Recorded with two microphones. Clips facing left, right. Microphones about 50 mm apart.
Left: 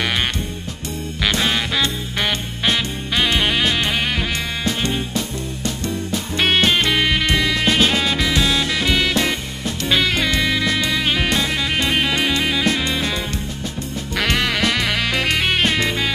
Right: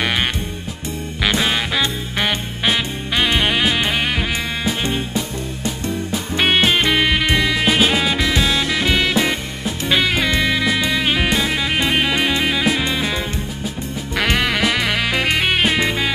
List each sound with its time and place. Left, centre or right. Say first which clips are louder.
1.2 s music: right 1 dB; centre
14.1 s music: right 1 dB; centre